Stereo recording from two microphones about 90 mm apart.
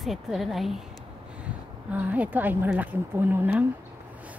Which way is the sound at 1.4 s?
15° right (ahead or behind).